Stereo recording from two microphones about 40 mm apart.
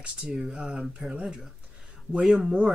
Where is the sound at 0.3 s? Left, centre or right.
Centre.